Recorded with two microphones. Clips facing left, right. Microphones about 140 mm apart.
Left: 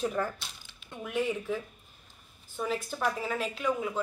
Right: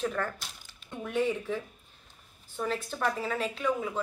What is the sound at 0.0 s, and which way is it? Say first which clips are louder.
Speech: left 1 dB; 10° left (ahead or behind).